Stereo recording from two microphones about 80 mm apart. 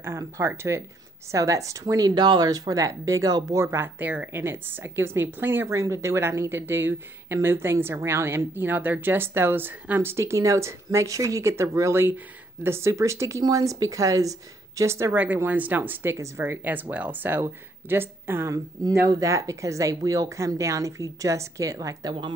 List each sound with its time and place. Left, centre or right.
0.4 s a woman's voice: right
3.5 s a woman's voice: right
4.0 s a woman's voice: right
10.1 s a woman's voice: right
15.1 s a woman's voice: right
18.5 s speech: right